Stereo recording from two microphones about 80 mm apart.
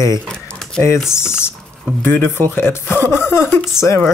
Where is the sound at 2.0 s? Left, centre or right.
Left.